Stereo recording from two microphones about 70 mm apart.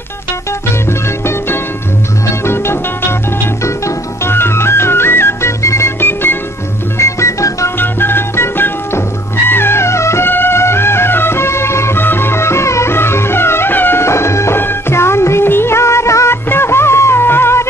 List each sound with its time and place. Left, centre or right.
0.8 s music: left
7.0 s music: left
7.7 s music: left